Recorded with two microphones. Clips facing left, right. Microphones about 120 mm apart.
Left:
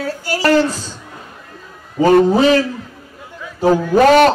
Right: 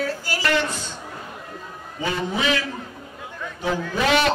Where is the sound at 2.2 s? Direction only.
40° left (ahead or behind).